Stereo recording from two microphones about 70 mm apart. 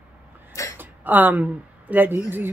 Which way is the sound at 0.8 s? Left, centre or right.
Right.